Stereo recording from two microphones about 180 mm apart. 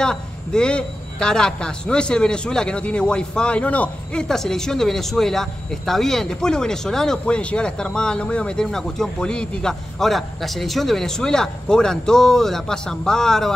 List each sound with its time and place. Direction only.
0.0 s a woman's voice: 5° left (ahead or behind)